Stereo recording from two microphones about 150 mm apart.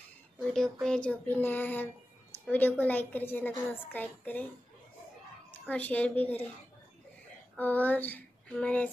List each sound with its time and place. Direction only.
0.4 s a woman's voice: 5° left (ahead or behind)
5.5 s a woman's voice: 10° left (ahead or behind)
7.5 s female singing: 10° left (ahead or behind)